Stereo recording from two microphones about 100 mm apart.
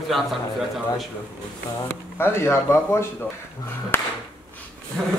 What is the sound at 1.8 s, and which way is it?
Speech, 25° left (ahead or behind).